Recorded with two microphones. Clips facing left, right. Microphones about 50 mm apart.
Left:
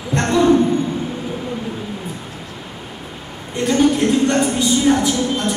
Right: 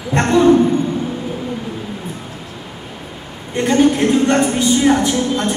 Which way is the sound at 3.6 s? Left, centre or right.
Right.